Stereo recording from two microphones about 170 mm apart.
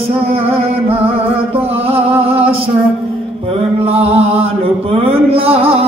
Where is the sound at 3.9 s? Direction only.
35° right (ahead or behind).